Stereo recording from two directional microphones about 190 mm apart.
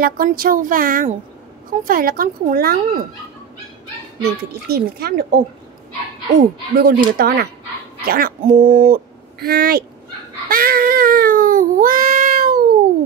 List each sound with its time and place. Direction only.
0.0 s speech: 50° right (ahead or behind)
4.2 s speech: 55° right (ahead or behind)
6.8 s speech: 55° right (ahead or behind)
10.5 s cat: 50° right (ahead or behind)